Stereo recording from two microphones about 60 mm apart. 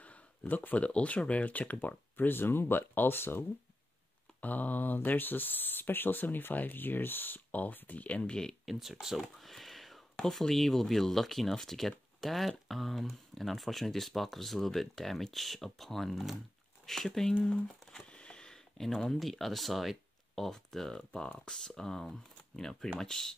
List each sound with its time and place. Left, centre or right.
0.0 s speech: left
8.6 s speech: centre
18.1 s a sound: centre
18.9 s speech: centre